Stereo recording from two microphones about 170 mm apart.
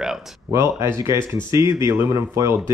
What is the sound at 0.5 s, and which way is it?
Speech, 15° right (ahead or behind).